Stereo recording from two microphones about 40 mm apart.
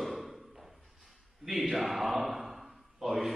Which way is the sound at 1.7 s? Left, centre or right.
Centre.